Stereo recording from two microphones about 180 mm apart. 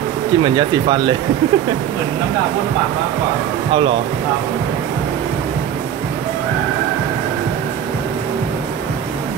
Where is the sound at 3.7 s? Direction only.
30° right (ahead or behind).